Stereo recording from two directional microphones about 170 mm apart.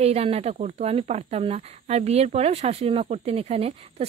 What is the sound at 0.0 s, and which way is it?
Speech, 35° right (ahead or behind).